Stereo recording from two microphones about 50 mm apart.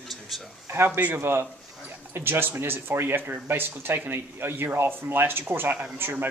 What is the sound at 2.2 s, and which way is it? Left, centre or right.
Speech, right.